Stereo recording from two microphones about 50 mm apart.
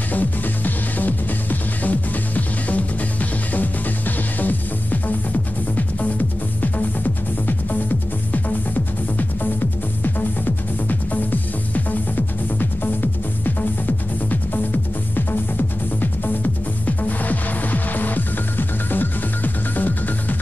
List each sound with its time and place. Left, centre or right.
0.1 s music: left
5.8 s music: left
8.3 s music: left
10.0 s music: left